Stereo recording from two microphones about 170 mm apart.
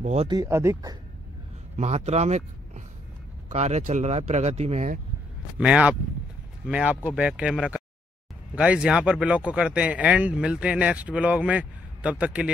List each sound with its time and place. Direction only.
0.0 s speech: 40° right (ahead or behind)
0.3 s speech: 20° right (ahead or behind)
1.8 s speech: 40° right (ahead or behind)
5.6 s speech: 5° right (ahead or behind)